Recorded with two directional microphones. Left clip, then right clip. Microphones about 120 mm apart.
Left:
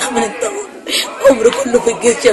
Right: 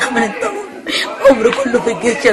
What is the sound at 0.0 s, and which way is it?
Chuckle, 25° left (ahead or behind).